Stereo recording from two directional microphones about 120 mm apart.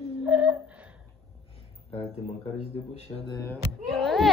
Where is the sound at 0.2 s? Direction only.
10° right (ahead or behind).